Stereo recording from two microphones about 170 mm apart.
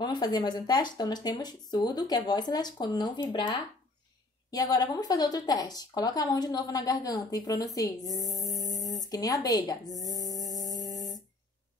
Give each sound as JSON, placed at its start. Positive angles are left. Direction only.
{"t": 0.0, "sound": "speech", "side_deg": 25}